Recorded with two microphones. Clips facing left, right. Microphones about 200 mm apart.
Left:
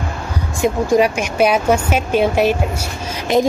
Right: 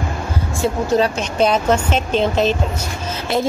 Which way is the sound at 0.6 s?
15° left (ahead or behind).